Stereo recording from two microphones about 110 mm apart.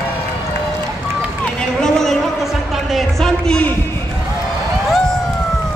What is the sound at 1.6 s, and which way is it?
Speech, 5° left (ahead or behind).